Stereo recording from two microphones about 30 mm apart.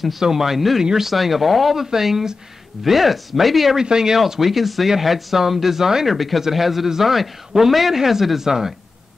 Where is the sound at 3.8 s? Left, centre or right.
Right.